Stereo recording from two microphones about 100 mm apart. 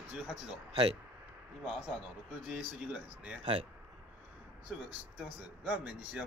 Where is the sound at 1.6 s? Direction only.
10° right (ahead or behind).